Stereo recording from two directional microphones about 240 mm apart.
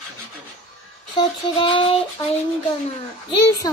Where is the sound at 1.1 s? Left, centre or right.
Centre.